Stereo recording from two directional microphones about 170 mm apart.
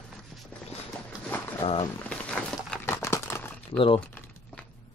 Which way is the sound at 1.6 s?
35° left (ahead or behind).